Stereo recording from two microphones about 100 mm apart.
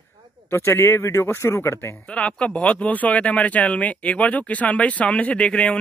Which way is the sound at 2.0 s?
10° left (ahead or behind).